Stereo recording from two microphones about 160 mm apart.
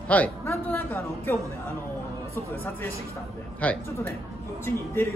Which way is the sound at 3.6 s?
10° left (ahead or behind).